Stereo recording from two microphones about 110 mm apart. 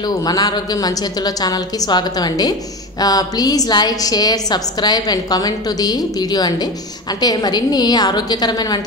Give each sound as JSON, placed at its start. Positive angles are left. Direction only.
{"t": 0.2, "sound": "a woman's voice", "side_deg": 35}